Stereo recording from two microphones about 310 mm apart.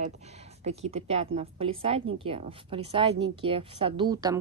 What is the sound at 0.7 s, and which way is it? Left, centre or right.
A woman's voice, centre.